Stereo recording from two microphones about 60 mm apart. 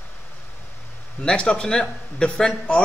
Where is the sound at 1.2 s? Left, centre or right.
Centre.